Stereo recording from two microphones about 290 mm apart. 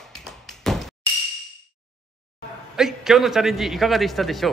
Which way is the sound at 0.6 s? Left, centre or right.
Centre.